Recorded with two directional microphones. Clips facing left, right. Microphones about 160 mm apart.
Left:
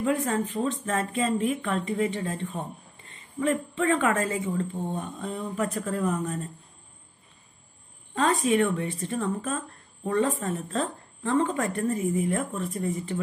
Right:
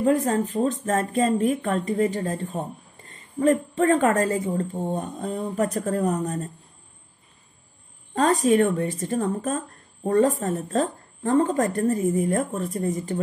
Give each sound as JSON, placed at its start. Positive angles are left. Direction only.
{"t": 0.0, "sound": "speech", "side_deg": -40}
{"t": 8.1, "sound": "speech", "side_deg": -40}